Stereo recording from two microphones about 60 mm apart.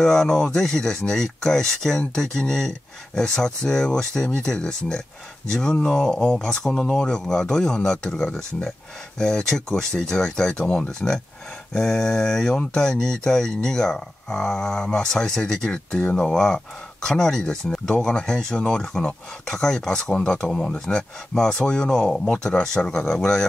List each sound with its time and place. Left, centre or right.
0.0 s speech: centre